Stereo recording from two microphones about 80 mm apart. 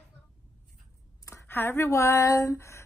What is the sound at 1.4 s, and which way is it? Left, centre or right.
Speech, left.